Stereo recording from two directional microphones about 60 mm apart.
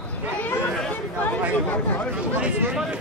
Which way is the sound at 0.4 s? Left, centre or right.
Left.